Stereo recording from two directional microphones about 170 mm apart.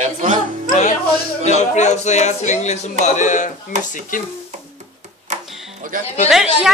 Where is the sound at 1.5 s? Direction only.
45° left (ahead or behind).